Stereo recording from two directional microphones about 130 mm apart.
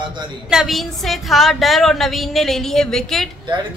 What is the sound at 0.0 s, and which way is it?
Speech, 35° right (ahead or behind).